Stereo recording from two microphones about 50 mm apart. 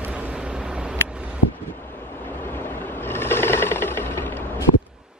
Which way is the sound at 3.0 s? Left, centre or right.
Left.